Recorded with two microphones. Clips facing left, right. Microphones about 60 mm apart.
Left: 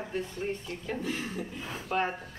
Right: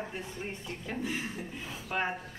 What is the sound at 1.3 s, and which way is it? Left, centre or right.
Speech, left.